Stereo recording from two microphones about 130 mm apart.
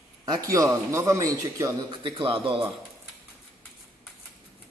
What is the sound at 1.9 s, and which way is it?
Speech, 40° right (ahead or behind).